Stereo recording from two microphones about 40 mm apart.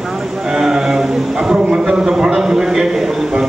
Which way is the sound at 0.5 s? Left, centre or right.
Centre.